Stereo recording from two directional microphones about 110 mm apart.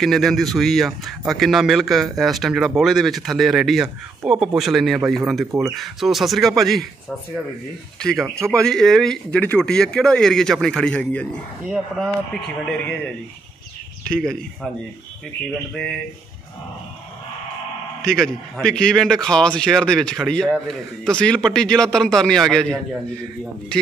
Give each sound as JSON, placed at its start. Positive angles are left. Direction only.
{"t": 0.0, "sound": "a man's voice", "side_deg": 0}
{"t": 8.0, "sound": "a man's voice", "side_deg": 5}
{"t": 8.4, "sound": "speech", "side_deg": -25}
{"t": 8.6, "sound": "a man's voice", "side_deg": 5}
{"t": 12.6, "sound": "a man's voice", "side_deg": 10}
{"t": 18.0, "sound": "a man's voice", "side_deg": 5}